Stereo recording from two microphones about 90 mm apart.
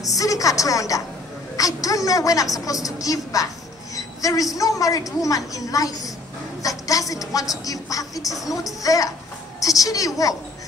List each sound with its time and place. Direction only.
0.0 s a woman's voice: 40° left (ahead or behind)
3.9 s a sound: 40° left (ahead or behind)
4.6 s a woman's voice: 40° left (ahead or behind)
8.3 s speech: centre (ahead or behind)
8.8 s a woman's voice: 40° left (ahead or behind)